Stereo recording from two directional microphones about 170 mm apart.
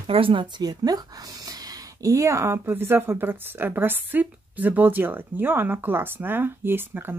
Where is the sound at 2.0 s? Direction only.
20° right (ahead or behind).